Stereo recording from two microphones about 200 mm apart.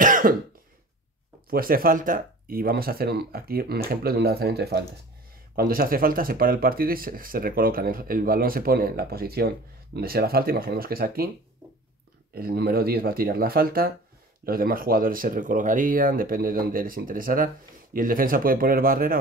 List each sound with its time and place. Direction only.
0.0 s cough: 40° right (ahead or behind)
1.5 s speech: 45° right (ahead or behind)
12.4 s speech: 50° right (ahead or behind)